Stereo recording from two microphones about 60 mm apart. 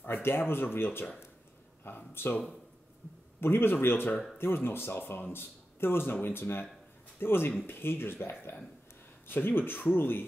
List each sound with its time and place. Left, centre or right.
0.0 s speech: left